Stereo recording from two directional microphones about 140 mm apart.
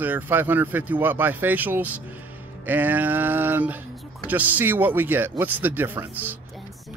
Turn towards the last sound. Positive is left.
turn(degrees=-15)  # may be behind; listen again after turning